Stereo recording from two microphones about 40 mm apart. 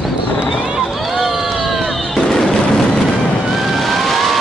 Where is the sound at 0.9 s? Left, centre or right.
Centre.